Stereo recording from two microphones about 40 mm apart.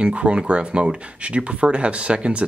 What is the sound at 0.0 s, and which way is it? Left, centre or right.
Speech, right.